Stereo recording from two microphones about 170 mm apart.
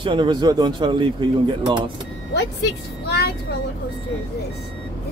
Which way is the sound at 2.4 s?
85° left.